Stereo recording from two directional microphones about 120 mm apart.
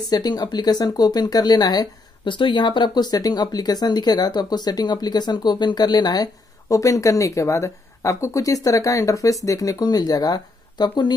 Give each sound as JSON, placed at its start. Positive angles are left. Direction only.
{"t": 0.1, "sound": "speech", "side_deg": 35}